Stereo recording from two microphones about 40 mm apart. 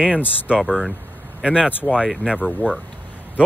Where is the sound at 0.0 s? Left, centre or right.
Right.